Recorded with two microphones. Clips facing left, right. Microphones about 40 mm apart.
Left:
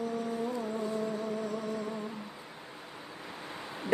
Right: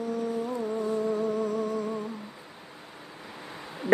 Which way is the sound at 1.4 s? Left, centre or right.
Right.